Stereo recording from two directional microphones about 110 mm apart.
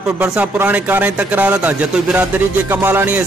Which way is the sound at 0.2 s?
15° right (ahead or behind).